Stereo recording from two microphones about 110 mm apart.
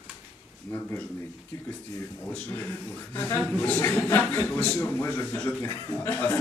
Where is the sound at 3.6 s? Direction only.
15° left (ahead or behind).